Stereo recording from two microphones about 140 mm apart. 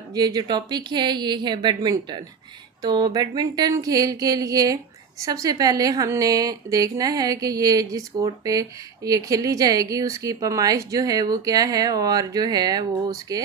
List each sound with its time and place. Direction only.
0.1 s a woman's voice: 30° right (ahead or behind)